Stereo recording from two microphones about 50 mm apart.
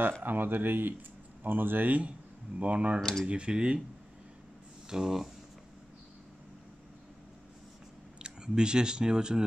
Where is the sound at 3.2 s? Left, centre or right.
Right.